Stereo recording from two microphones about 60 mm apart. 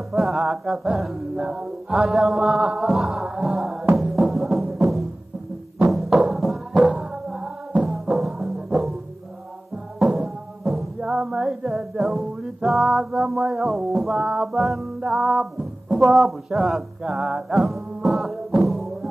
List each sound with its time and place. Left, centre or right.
0.1 s music: centre
1.4 s mantra: centre
2.9 s a sound: centre
3.9 s music: centre
6.7 s music: centre
7.0 s music: centre
8.5 s music: centre
9.9 s music: centre
11.0 s music: centre
14.3 s mantra: centre
16.2 s music: centre